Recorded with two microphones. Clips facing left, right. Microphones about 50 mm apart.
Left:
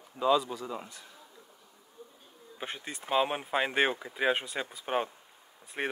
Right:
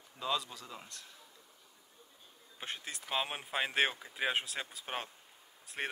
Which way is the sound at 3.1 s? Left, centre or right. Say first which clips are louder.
Left 9 dB; centre.